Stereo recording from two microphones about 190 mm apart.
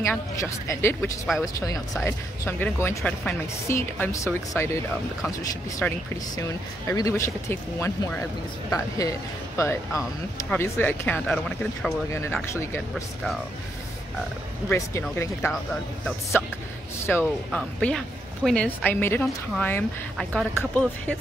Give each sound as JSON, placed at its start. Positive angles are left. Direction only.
{"t": 0.0, "sound": "speech", "side_deg": 15}
{"t": 2.0, "sound": "speech", "side_deg": 10}
{"t": 3.0, "sound": "speech", "side_deg": 0}
{"t": 3.6, "sound": "speech", "side_deg": 15}
{"t": 12.1, "sound": "speech", "side_deg": 15}
{"t": 12.9, "sound": "speech", "side_deg": 0}
{"t": 14.7, "sound": "speech", "side_deg": 15}